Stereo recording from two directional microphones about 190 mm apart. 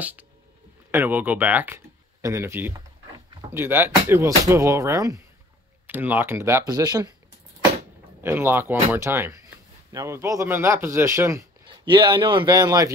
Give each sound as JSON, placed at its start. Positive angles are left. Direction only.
{"t": 0.9, "sound": "speech", "side_deg": -10}
{"t": 8.2, "sound": "a man's voice", "side_deg": -10}